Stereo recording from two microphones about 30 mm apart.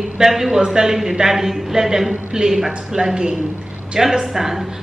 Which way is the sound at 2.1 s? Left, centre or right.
Right.